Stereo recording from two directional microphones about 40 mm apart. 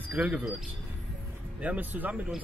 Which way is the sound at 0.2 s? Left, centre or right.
Right.